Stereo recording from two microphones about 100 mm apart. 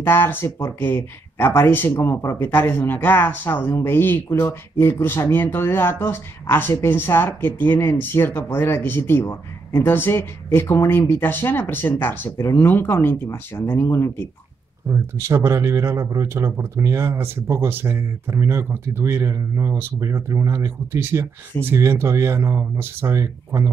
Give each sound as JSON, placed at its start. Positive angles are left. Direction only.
{"t": 0.0, "sound": "speech", "side_deg": 20}
{"t": 14.9, "sound": "speech", "side_deg": -30}